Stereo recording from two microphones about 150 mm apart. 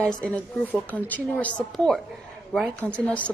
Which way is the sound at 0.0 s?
10° left (ahead or behind).